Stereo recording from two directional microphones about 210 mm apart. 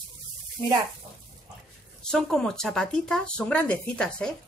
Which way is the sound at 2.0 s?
5° left (ahead or behind).